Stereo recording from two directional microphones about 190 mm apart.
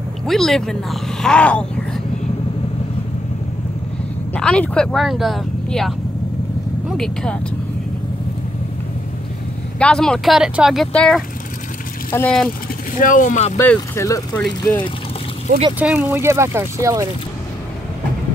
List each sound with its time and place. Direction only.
0.3 s speech: centre (ahead or behind)
4.3 s speech: 5° left (ahead or behind)
9.8 s speech: 5° left (ahead or behind)
13.0 s speech: 45° left (ahead or behind)
13.6 s speech: 15° left (ahead or behind)
15.8 s speech: 10° right (ahead or behind)